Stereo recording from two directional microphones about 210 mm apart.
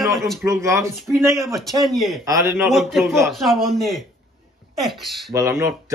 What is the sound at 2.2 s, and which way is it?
Speech, 15° right (ahead or behind).